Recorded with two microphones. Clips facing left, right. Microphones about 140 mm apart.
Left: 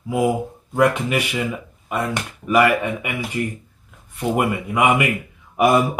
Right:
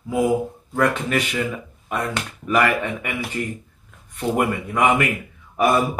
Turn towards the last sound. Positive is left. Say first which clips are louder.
# left 2 dB
turn(degrees=15)  # may be behind; listen again after turning